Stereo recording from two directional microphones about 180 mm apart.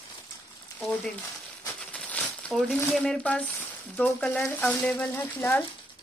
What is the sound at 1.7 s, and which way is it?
Crumpling, 10° left (ahead or behind).